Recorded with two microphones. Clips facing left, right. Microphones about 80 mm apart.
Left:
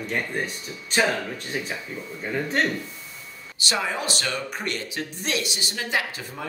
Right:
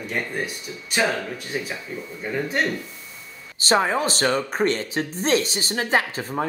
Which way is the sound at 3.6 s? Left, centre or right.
Right.